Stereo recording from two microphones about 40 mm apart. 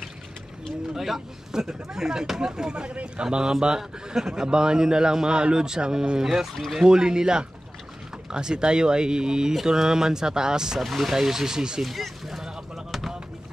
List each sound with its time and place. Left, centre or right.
0.9 s a man's voice: centre
10.8 s speech: centre
11.8 s a sound: centre